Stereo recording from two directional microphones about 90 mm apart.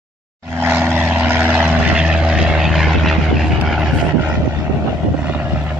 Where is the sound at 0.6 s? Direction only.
25° right (ahead or behind); by 3.9 s 5° right (ahead or behind).